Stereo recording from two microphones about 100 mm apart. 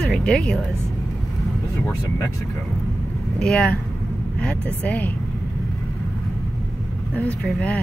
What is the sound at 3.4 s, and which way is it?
Speech, 10° left (ahead or behind).